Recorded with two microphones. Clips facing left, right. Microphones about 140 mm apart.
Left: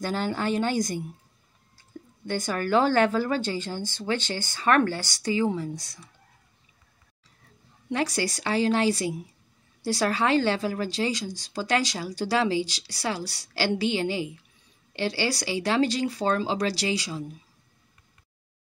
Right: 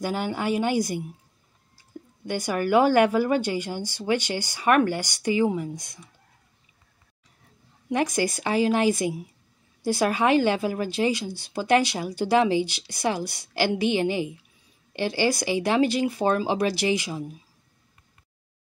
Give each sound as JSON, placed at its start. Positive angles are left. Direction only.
{"t": 0.0, "sound": "a woman's voice", "side_deg": -10}
{"t": 7.9, "sound": "a woman's voice", "side_deg": -15}